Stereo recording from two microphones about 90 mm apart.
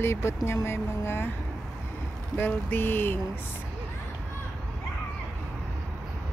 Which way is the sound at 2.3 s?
20° left (ahead or behind).